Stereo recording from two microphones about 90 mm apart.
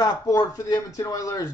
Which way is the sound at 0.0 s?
40° left (ahead or behind).